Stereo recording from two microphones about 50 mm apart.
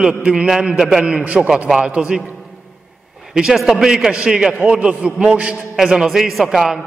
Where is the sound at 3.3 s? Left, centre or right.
Centre.